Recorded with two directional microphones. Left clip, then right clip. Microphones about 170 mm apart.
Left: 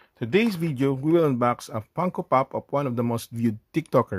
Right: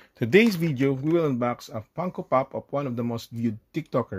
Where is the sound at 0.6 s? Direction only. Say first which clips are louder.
Even; centre (ahead or behind).